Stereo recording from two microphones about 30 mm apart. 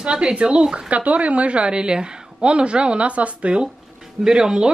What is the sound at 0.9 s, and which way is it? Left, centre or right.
A woman's voice, right.